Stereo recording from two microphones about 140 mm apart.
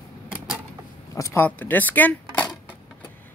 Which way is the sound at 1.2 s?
20° left (ahead or behind).